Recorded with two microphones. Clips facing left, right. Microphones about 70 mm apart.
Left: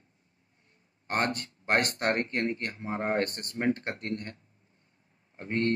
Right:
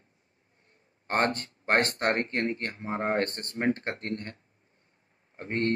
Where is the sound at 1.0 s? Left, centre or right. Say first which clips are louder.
Right 3 dB; right.